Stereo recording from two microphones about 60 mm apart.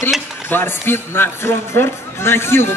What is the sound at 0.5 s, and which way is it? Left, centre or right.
A man's voice, left.